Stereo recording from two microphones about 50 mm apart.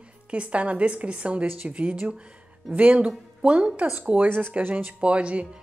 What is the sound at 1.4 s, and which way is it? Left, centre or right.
A woman's voice, right.